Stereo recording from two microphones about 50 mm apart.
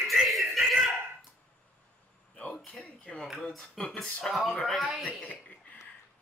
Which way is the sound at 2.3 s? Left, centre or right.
Left.